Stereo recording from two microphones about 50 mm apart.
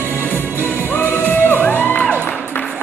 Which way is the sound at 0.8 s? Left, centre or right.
Left.